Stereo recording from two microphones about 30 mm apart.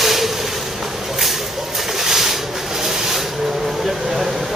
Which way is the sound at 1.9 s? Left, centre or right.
Centre.